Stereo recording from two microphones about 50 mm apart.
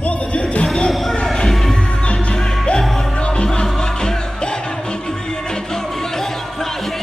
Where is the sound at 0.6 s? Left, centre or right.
Centre.